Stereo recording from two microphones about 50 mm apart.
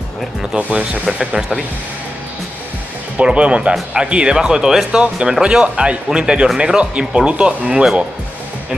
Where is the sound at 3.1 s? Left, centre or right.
Right.